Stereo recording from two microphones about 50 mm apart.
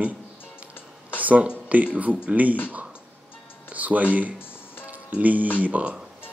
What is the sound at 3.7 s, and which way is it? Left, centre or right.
Speech, right.